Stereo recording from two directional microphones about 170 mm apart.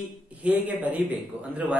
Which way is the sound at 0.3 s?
10° right (ahead or behind).